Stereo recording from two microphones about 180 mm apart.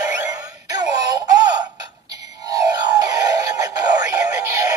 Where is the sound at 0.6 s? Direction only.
20° right (ahead or behind).